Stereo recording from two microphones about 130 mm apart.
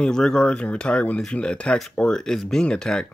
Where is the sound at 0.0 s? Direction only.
5° left (ahead or behind).